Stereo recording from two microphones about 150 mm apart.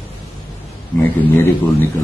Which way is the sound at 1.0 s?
15° left (ahead or behind).